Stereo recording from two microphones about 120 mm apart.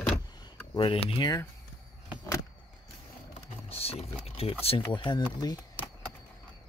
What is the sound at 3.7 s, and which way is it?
Speech, 55° left (ahead or behind).